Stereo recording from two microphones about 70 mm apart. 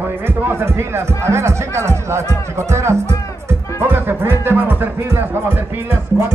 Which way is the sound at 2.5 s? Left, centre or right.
Right.